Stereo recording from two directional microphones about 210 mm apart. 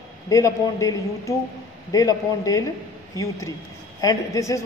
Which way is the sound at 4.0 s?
15° left (ahead or behind).